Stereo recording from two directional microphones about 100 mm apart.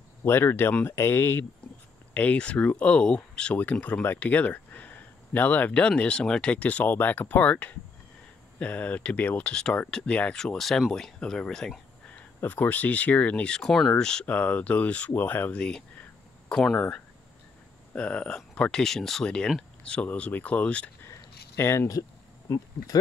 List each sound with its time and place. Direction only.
0.2 s speech: 20° left (ahead or behind); by 12.2 s 5° left (ahead or behind)
12.4 s speech: 15° left (ahead or behind)
16.4 s speech: 5° left (ahead or behind)
21.0 s a sound: 25° left (ahead or behind)